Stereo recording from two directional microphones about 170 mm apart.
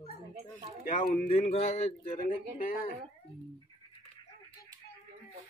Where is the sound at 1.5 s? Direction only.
35° left (ahead or behind).